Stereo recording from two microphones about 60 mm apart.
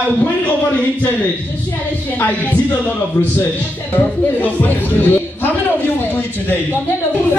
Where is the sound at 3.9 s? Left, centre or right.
Left.